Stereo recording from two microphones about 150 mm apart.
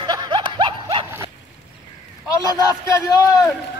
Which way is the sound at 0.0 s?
30° right (ahead or behind).